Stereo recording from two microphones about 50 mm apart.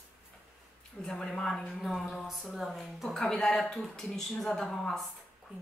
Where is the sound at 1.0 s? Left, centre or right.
Centre.